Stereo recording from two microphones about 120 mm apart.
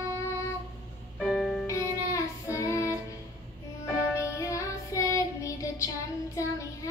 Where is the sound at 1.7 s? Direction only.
25° left (ahead or behind).